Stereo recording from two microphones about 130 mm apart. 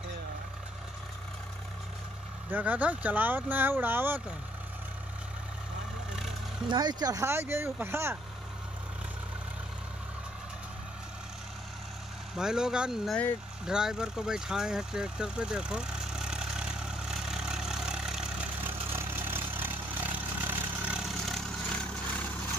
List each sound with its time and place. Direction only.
2.5 s speech: 10° right (ahead or behind)
6.7 s speech: 30° right (ahead or behind)
12.4 s speech: 5° right (ahead or behind)
13.7 s vehicle: 5° right (ahead or behind)
18.9 s vehicle: 15° right (ahead or behind); by 21.8 s centre (ahead or behind)